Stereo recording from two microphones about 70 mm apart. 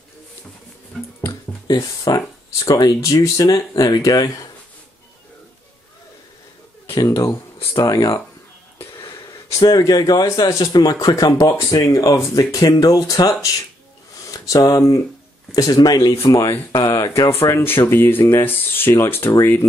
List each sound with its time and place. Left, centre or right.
1.7 s speech: left
7.1 s speech: left
7.7 s speech: left
8.9 s wheeze: left
9.6 s speech: left
12.6 s speech: left
15.5 s speech: left
16.7 s a sound: left
17.3 s speech: left